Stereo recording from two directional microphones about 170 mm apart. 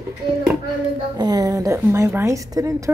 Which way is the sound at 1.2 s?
20° right (ahead or behind).